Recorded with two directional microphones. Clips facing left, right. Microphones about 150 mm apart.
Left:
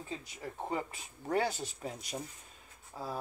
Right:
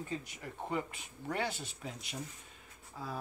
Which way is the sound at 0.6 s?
30° left (ahead or behind).